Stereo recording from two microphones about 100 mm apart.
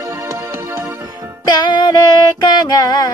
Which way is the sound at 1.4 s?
50° left (ahead or behind).